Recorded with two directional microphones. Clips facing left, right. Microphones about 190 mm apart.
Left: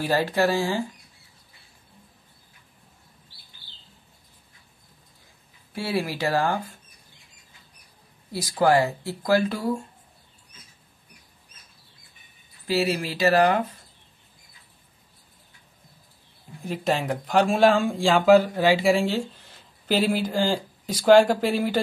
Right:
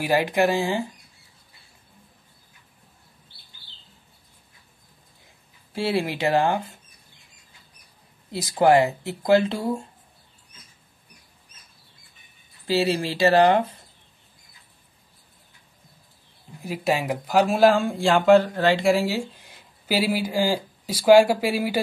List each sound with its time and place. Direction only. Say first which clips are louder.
0.0 s speech: right 2 dB; 15° right (ahead or behind)
5.7 s speech: right 3 dB; 25° right (ahead or behind)
8.3 s speech: right 3 dB; 20° right (ahead or behind)
12.6 s speech: right 2 dB; 30° right (ahead or behind)
16.6 s speech: right 1 dB; 10° right (ahead or behind)